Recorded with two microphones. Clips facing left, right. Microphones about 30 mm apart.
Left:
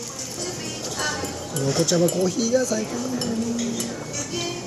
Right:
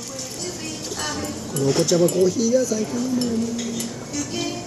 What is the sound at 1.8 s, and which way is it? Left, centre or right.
Speech, centre.